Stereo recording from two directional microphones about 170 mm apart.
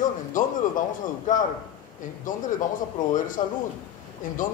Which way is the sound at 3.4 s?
45° left (ahead or behind).